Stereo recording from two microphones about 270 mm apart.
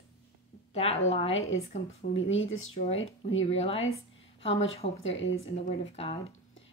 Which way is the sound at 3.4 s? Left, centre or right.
Left.